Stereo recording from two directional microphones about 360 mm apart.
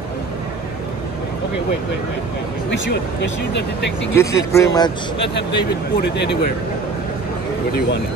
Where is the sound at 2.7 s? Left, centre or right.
Left.